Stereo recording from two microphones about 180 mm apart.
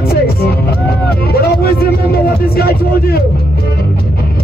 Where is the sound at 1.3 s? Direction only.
60° left (ahead or behind).